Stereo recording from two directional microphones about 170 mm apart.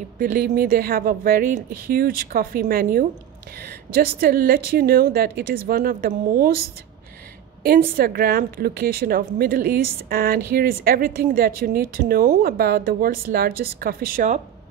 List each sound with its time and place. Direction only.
0.2 s a woman's voice: 55° right (ahead or behind)
7.6 s a woman's voice: 60° right (ahead or behind)